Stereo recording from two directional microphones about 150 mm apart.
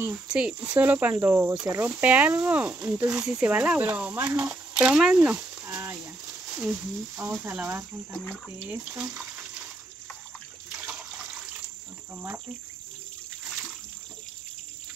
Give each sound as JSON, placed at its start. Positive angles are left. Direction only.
{"t": 0.0, "sound": "speech", "side_deg": -10}
{"t": 5.7, "sound": "a sound", "side_deg": -15}
{"t": 7.4, "sound": "speech", "side_deg": -15}